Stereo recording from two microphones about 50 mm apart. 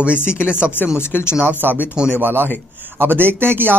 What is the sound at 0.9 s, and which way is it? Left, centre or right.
Speech, left.